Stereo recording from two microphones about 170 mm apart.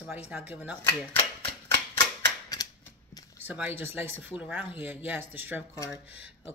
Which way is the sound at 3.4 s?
10° right (ahead or behind).